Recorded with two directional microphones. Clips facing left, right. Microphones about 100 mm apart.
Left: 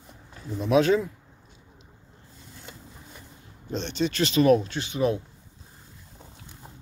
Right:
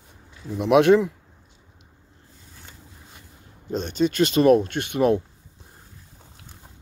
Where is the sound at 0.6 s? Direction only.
60° right (ahead or behind).